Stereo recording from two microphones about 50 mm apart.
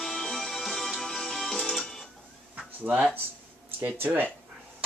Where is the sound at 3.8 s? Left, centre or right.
Right.